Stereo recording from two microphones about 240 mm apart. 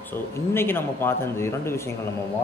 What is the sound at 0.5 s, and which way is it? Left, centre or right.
A man's voice, centre.